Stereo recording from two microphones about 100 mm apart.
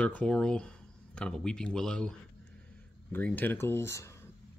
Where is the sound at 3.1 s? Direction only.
15° left (ahead or behind).